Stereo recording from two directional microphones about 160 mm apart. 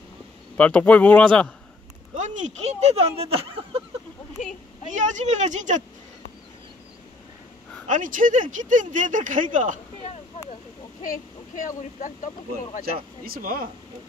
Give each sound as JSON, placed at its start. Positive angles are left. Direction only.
{"t": 0.6, "sound": "speech", "side_deg": 5}
{"t": 2.1, "sound": "speech", "side_deg": -50}
{"t": 4.9, "sound": "speech", "side_deg": -50}
{"t": 7.9, "sound": "speech", "side_deg": -55}
{"t": 11.0, "sound": "speech", "side_deg": 55}
{"t": 13.2, "sound": "speech", "side_deg": -65}